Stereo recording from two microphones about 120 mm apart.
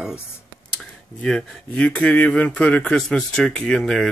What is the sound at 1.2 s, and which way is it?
Speech, 10° left (ahead or behind).